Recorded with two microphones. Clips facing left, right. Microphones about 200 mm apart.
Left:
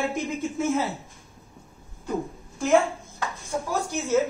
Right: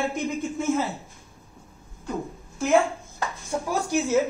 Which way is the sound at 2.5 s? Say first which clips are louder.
Even; centre (ahead or behind).